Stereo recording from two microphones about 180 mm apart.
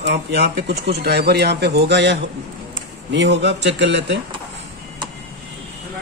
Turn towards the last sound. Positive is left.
turn(degrees=-75)  # may be behind; listen again after turning